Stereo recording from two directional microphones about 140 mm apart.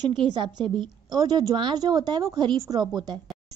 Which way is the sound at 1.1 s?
30° right (ahead or behind).